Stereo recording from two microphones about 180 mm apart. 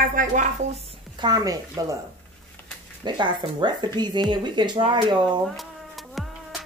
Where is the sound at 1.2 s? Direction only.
20° right (ahead or behind).